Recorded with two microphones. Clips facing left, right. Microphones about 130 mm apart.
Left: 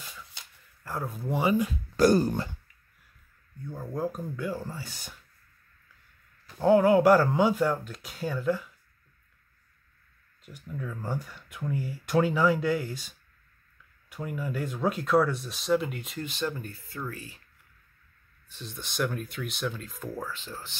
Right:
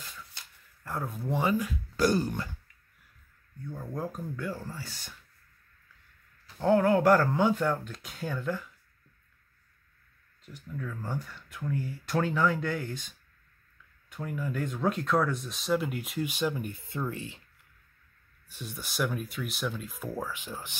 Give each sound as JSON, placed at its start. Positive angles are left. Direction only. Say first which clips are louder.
{"t": 0.8, "sound": "speech", "louder": "left 1 dB", "side_deg": 0}
{"t": 1.2, "sound": "speech", "louder": "left 2 dB", "side_deg": 15}
{"t": 2.0, "sound": "speech", "louder": "left 5 dB", "side_deg": 45}
{"t": 3.6, "sound": "speech", "louder": "left 4 dB", "side_deg": 5}
{"t": 6.6, "sound": "speech", "louder": "left 3 dB", "side_deg": 10}
{"t": 10.4, "sound": "speech", "louder": "left 1 dB", "side_deg": 15}
{"t": 18.5, "sound": "speech", "louder": "even", "side_deg": -10}